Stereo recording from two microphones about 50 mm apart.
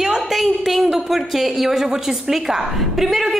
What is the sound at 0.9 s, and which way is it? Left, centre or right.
A woman's voice, centre.